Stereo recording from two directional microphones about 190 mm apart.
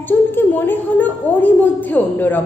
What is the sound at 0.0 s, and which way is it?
A woman's voice, 10° left (ahead or behind).